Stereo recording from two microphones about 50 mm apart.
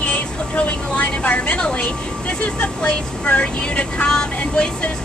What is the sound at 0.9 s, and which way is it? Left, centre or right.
Vehicle, left.